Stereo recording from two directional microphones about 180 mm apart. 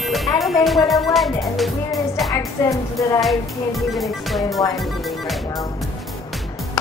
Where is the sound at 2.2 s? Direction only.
20° left (ahead or behind).